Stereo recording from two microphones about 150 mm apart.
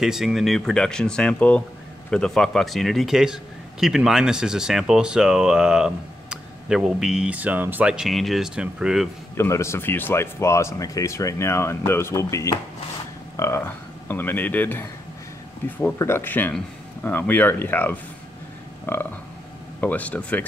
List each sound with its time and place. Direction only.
0.0 s speech: centre (ahead or behind)
9.4 s speech: 20° left (ahead or behind)